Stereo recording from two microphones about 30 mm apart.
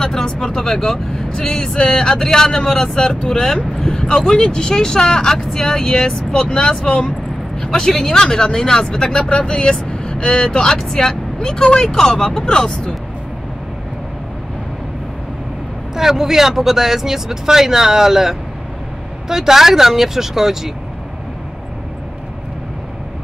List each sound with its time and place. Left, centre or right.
0.0 s speech: left
0.8 s speech: centre
16.0 s speech: centre